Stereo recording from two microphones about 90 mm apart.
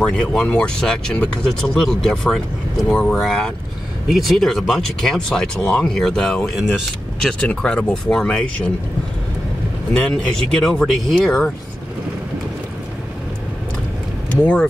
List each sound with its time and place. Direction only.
0.0 s speech: 10° left (ahead or behind)
9.9 s speech: 10° left (ahead or behind)
14.3 s speech: 15° left (ahead or behind)